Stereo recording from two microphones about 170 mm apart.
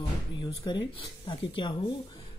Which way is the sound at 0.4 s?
30° left (ahead or behind).